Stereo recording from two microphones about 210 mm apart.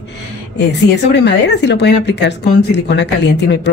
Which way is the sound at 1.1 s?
55° left (ahead or behind).